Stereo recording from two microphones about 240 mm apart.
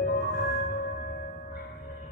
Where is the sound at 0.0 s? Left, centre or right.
Left.